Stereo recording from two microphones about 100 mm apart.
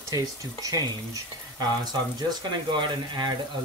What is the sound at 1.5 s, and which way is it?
Speech, 45° right (ahead or behind).